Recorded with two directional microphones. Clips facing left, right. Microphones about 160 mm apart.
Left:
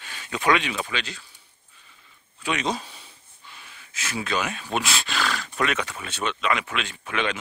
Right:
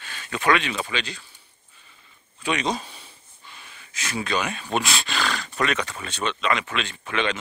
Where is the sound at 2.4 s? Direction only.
5° left (ahead or behind).